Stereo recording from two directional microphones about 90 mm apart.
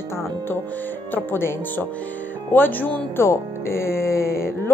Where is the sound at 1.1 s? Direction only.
20° left (ahead or behind).